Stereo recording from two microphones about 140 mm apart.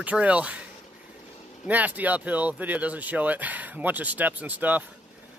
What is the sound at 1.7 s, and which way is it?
Speech, 10° right (ahead or behind).